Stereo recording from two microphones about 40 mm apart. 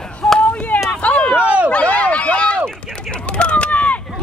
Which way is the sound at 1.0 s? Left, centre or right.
Left.